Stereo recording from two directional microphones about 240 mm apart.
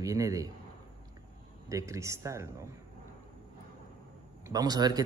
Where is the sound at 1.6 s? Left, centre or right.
Centre.